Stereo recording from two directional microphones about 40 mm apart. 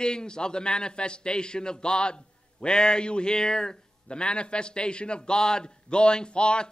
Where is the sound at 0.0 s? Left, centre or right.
Left.